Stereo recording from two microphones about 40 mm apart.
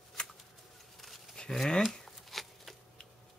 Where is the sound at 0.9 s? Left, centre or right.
Centre.